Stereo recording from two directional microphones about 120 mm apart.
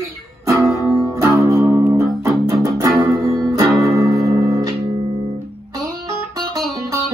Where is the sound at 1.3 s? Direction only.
25° right (ahead or behind).